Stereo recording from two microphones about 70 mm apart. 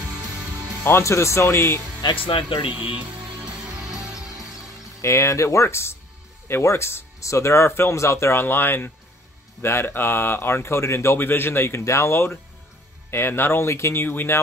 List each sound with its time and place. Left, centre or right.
0.8 s speech: left
2.0 s speech: left
2.7 s music: right
5.0 s speech: left
11.1 s speech: left
14.0 s speech: left